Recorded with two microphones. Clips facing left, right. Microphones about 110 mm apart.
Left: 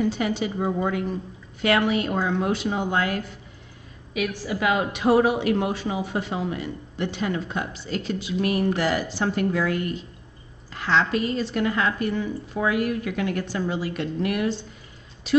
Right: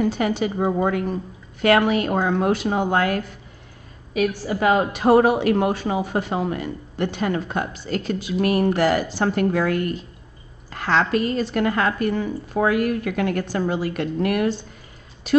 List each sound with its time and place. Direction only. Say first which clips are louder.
0.0 s a woman's voice: right 3 dB; 50° right (ahead or behind)
4.1 s a woman's voice: right 5 dB; 40° right (ahead or behind)